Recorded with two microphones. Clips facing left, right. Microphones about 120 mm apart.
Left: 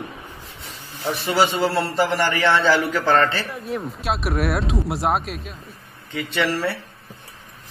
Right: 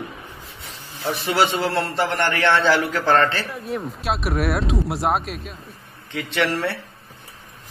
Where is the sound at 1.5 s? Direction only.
5° left (ahead or behind).